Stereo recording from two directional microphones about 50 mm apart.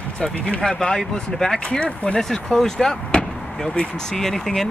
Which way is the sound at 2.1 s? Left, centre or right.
Centre.